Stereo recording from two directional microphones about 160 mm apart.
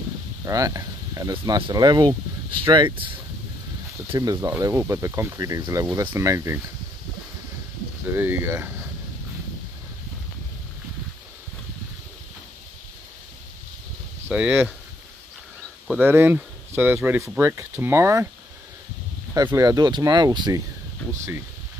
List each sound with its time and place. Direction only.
0.5 s speech: 20° right (ahead or behind)
4.1 s speech: 25° right (ahead or behind)
8.1 s speech: 15° right (ahead or behind)
14.2 s speech: 10° right (ahead or behind)
15.9 s speech: 10° right (ahead or behind)
19.3 s speech: 25° right (ahead or behind)